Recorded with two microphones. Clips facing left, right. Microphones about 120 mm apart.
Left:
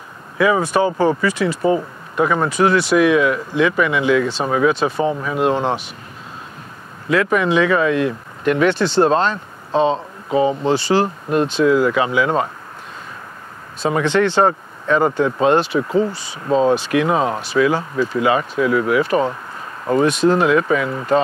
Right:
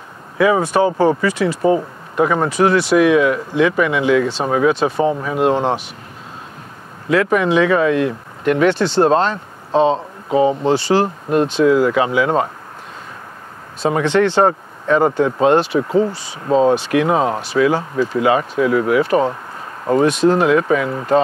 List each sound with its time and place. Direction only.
0.4 s speech: 40° right (ahead or behind)
7.1 s speech: 45° right (ahead or behind)
8.8 s speech: 25° right (ahead or behind)
9.1 s speech: 40° right (ahead or behind)
10.7 s speech: 45° right (ahead or behind)
11.2 s speech: 30° right (ahead or behind)
13.8 s speech: 35° right (ahead or behind)
15.4 s speech: 45° right (ahead or behind)
15.8 s speech: 30° right (ahead or behind)
16.7 s speech: 45° right (ahead or behind)